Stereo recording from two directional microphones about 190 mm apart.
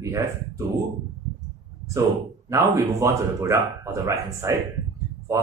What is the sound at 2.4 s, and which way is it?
Speech, 15° right (ahead or behind).